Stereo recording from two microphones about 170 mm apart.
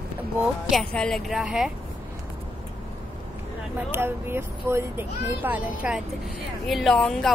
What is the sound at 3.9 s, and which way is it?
A woman's voice, 15° right (ahead or behind).